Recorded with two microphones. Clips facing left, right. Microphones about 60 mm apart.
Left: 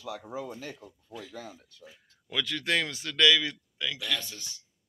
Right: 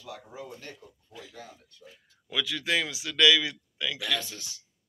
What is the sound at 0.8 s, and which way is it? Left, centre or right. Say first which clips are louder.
Speech: left 2 dB; left.